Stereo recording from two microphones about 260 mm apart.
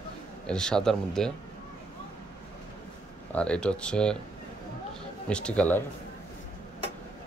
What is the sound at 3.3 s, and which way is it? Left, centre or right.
Speech, centre.